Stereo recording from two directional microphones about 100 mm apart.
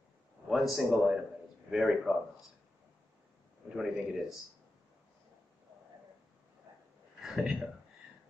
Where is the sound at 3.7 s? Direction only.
5° right (ahead or behind).